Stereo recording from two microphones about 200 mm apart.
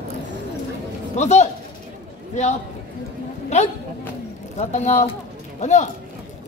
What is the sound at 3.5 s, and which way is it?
Speech, 35° left (ahead or behind).